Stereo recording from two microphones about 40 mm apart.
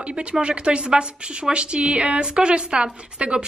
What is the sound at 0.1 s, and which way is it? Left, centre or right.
A woman's voice, right.